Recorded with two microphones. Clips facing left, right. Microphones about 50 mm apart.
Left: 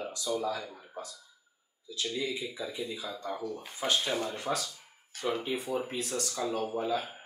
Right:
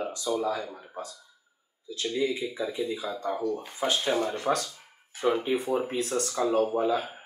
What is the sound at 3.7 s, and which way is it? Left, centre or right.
Speech, centre.